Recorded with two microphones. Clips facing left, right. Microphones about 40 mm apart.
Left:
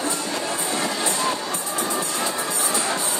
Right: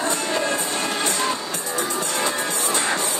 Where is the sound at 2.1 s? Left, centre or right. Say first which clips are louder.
Right 2 dB; right.